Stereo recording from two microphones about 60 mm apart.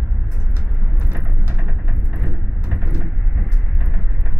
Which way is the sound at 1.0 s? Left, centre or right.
Right.